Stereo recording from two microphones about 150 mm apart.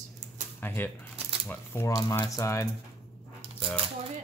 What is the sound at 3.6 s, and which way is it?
Cutlery, 40° right (ahead or behind).